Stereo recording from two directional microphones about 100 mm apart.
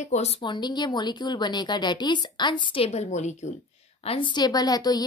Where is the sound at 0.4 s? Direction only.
50° left (ahead or behind); by 3.1 s 80° left.